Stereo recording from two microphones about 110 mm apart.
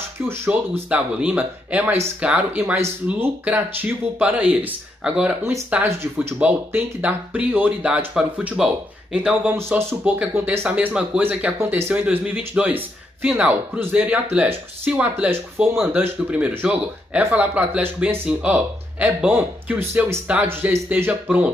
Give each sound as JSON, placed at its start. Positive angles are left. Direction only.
{"t": 0.5, "sound": "speech", "side_deg": -10}
{"t": 2.6, "sound": "speech", "side_deg": -25}